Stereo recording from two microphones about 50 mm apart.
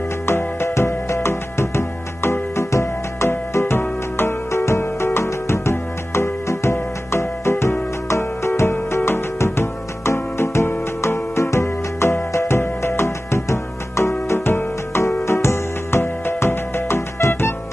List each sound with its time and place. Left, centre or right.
0.3 s music: left
3.3 s music: left
4.5 s music: left